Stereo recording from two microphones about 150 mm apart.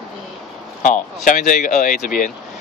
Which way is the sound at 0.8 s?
60° left (ahead or behind).